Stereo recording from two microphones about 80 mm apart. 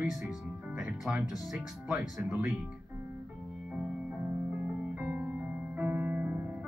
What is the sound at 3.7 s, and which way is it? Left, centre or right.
Music, centre.